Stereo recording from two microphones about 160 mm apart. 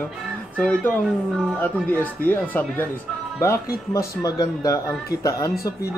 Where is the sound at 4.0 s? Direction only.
20° left (ahead or behind).